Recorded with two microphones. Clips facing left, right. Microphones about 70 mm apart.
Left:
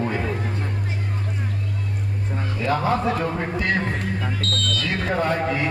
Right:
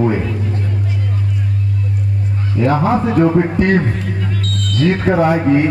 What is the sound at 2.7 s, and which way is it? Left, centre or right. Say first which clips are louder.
Speech: right 5 dB; centre.